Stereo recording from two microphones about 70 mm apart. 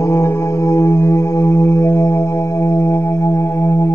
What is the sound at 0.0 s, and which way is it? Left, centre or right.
Music, left.